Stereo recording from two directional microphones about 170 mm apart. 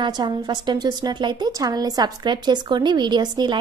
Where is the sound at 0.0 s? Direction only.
25° right (ahead or behind).